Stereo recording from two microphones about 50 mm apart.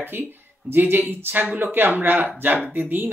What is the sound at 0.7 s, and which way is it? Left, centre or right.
Speech, right.